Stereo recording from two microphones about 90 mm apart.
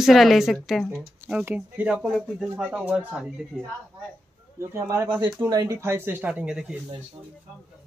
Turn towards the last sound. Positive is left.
turn(degrees=-10)  # may be behind; listen again after turning